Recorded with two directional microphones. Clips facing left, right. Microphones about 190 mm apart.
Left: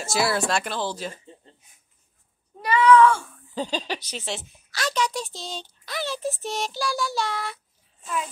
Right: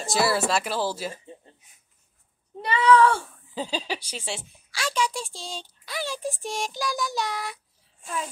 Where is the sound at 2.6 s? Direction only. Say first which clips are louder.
Left 2 dB; 30° right (ahead or behind).